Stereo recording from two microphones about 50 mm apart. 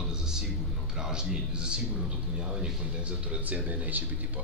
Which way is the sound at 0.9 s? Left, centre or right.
Centre.